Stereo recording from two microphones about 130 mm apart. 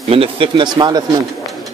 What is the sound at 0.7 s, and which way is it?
Speech, 30° right (ahead or behind).